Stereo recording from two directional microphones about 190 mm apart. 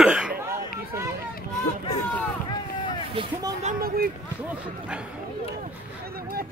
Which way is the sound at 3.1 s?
30° right (ahead or behind).